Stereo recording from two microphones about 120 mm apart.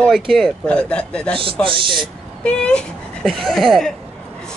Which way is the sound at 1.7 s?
45° right (ahead or behind).